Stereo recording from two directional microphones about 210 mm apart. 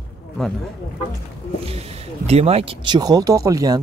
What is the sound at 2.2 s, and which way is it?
Speech, 30° right (ahead or behind).